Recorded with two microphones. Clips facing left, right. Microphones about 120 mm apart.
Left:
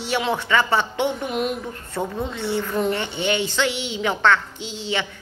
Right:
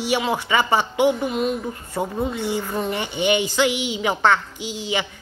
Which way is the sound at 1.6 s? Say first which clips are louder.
Right 1 dB; 10° right (ahead or behind).